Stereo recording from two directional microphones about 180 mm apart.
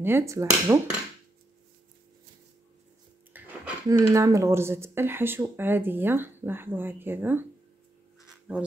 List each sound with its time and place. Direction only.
0.0 s speech: 15° right (ahead or behind)
3.3 s speech: 10° right (ahead or behind)
8.3 s writing: 5° right (ahead or behind)